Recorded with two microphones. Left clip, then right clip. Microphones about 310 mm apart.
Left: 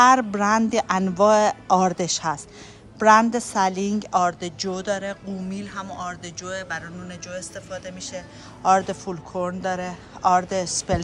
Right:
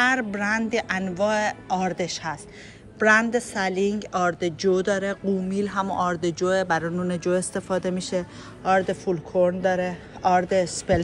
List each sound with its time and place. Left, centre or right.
0.3 s a woman's voice: centre
8.6 s speech: centre